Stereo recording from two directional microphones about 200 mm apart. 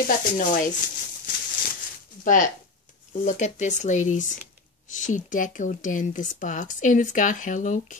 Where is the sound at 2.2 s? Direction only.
40° left (ahead or behind).